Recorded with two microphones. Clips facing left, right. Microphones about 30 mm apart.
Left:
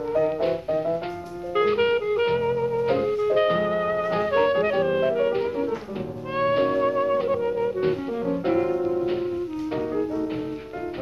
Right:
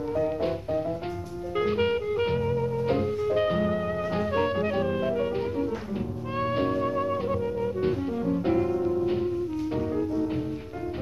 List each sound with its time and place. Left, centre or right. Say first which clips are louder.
0.1 s music: left 5 dB; centre